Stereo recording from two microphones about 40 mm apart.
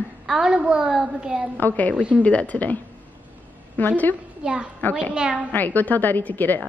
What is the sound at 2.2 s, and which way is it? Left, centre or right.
Speech, left.